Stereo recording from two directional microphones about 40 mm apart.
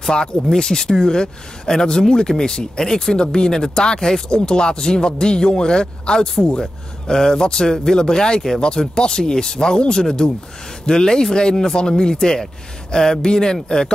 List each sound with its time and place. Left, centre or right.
0.0 s speech: centre